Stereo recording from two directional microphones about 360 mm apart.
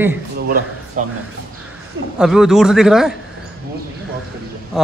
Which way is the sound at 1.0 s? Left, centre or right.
Right.